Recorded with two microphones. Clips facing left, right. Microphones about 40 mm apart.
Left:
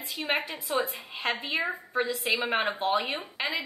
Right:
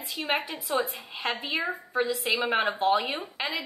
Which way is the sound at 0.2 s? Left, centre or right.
Centre.